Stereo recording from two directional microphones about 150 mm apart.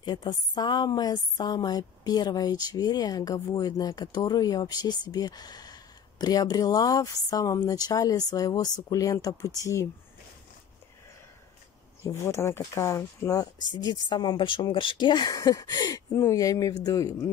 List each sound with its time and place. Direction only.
0.0 s a woman's voice: 30° left (ahead or behind)
12.0 s a woman's voice: 20° left (ahead or behind)